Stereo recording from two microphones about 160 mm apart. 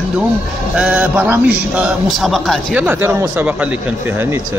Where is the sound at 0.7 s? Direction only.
10° right (ahead or behind).